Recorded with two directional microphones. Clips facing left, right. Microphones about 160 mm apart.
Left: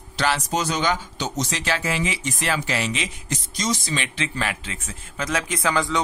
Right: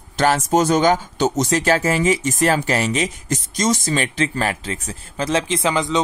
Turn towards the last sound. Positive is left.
turn(degrees=-20)  # may be behind; listen again after turning